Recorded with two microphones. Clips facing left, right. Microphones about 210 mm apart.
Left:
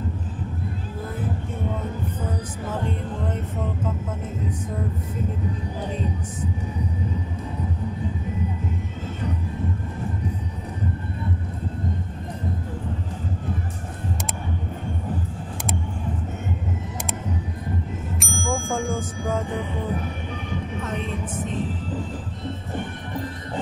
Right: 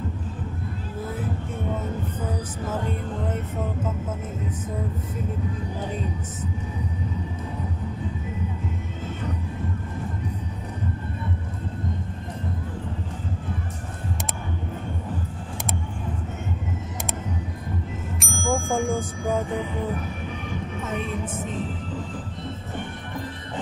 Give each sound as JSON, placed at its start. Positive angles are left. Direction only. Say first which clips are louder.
{"t": 18.2, "sound": "bicycle bell", "louder": "right 2 dB", "side_deg": 0}